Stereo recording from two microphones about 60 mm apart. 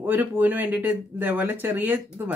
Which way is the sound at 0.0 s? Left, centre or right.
Right.